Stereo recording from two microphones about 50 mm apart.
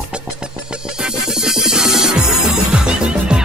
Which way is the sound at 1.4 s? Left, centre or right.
Centre.